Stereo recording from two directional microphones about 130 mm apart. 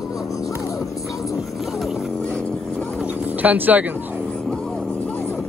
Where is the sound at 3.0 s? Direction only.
10° right (ahead or behind).